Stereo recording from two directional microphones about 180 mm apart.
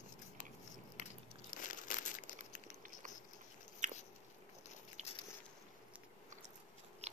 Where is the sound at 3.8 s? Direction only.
45° right (ahead or behind).